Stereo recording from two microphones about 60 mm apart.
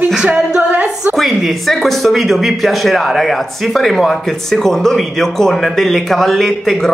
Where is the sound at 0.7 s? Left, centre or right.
Right.